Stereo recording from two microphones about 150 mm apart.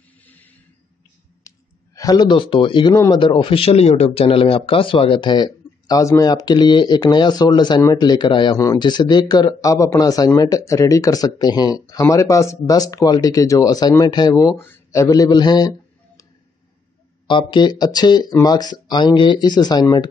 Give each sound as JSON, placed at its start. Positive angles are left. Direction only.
{"t": 0.2, "sound": "a sound", "side_deg": 10}
{"t": 2.0, "sound": "speech", "side_deg": 25}
{"t": 2.9, "sound": "a man's voice", "side_deg": 20}
{"t": 3.2, "sound": "a man's voice", "side_deg": 35}
{"t": 17.3, "sound": "a man's voice", "side_deg": 30}